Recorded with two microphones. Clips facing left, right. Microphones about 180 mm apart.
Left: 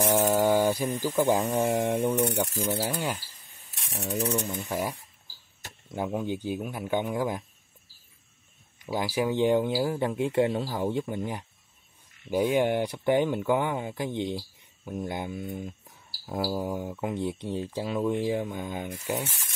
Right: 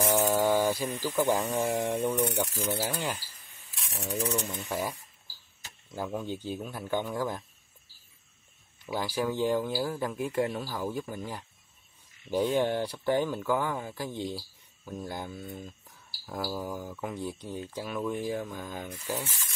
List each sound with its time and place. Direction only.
0.0 s speech: 15° left (ahead or behind)
2.4 s rub: centre (ahead or behind)
4.1 s a man's voice: 20° left (ahead or behind)
5.9 s a man's voice: 20° left (ahead or behind)
8.8 s a man's voice: 10° left (ahead or behind)